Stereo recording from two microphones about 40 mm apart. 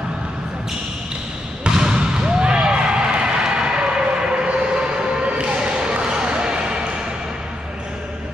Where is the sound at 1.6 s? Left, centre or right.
Centre.